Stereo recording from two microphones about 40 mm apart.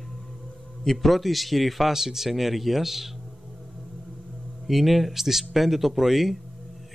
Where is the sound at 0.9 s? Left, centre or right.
Centre.